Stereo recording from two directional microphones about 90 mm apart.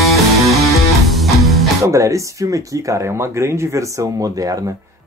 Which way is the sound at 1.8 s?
35° right (ahead or behind).